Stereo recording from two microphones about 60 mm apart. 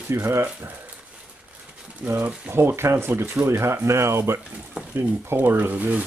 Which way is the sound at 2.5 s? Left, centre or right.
Right.